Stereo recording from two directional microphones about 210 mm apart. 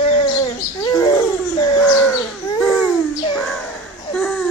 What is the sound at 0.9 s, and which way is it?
Bird, 15° left (ahead or behind).